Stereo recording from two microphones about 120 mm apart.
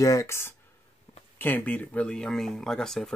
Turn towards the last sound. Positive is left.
turn(degrees=5)  # may be behind; listen again after turning